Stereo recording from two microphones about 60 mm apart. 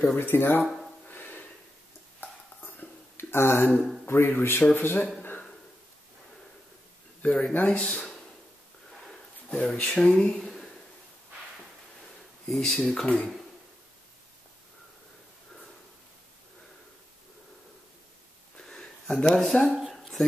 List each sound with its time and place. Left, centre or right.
0.0 s speech: left
1.0 s a sound: left
4.3 s speech: left
7.2 s speech: left
9.7 s speech: centre
12.4 s speech: centre
13.0 s speech: centre
18.6 s a sound: centre
19.4 s speech: centre
19.9 s a sound: centre